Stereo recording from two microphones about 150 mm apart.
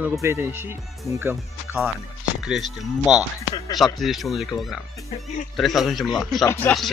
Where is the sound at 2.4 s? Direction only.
Centre (ahead or behind).